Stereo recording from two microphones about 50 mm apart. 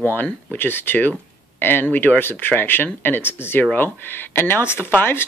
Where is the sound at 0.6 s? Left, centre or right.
Left.